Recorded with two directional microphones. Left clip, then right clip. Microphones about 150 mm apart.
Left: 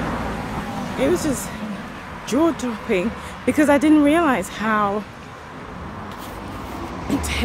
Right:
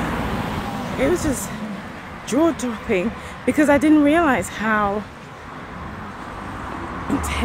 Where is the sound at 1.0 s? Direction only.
Centre (ahead or behind).